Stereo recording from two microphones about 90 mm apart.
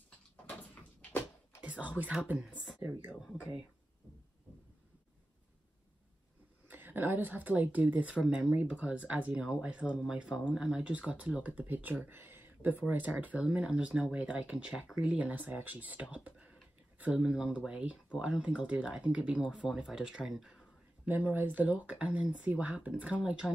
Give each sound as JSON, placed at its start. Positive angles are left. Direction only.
{"t": 1.6, "sound": "speech", "side_deg": -15}
{"t": 6.7, "sound": "speech", "side_deg": -20}
{"t": 21.1, "sound": "speech", "side_deg": -20}